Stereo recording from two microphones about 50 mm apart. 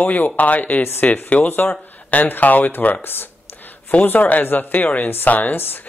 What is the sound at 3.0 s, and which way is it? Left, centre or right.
Speech, left.